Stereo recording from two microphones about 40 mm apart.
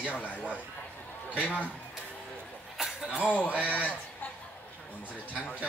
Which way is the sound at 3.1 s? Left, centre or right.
Left.